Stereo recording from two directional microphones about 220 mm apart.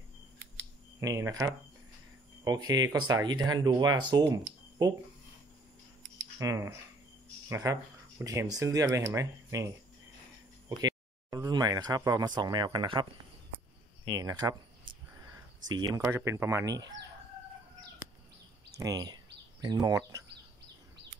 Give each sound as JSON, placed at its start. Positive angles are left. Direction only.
{"t": 1.0, "sound": "speech", "side_deg": -15}
{"t": 6.4, "sound": "speech", "side_deg": -15}
{"t": 10.8, "sound": "speech", "side_deg": -15}
{"t": 14.0, "sound": "speech", "side_deg": -15}
{"t": 15.7, "sound": "speech", "side_deg": -15}
{"t": 18.8, "sound": "speech", "side_deg": -15}